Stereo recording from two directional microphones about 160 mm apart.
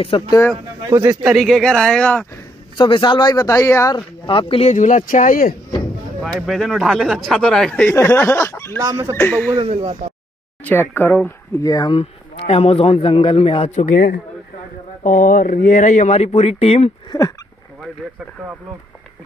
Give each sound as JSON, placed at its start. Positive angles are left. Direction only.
{"t": 0.1, "sound": "a man's voice", "side_deg": 30}
{"t": 0.8, "sound": "speech", "side_deg": -20}
{"t": 1.2, "sound": "speech", "side_deg": 0}
{"t": 2.8, "sound": "speech", "side_deg": 30}
{"t": 4.3, "sound": "speech", "side_deg": 35}
{"t": 6.4, "sound": "speech", "side_deg": 0}
{"t": 8.7, "sound": "speech", "side_deg": -20}
{"t": 9.1, "sound": "speech", "side_deg": 10}
{"t": 9.6, "sound": "speech", "side_deg": -40}
{"t": 10.6, "sound": "speech", "side_deg": 10}
{"t": 12.0, "sound": "a man's voice", "side_deg": 40}
{"t": 13.7, "sound": "speech", "side_deg": 50}
{"t": 17.1, "sound": "speech", "side_deg": 20}